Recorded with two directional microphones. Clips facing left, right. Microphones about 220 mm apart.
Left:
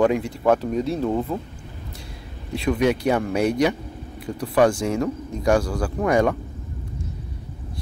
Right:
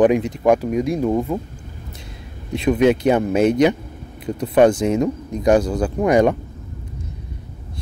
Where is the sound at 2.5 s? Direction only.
20° right (ahead or behind).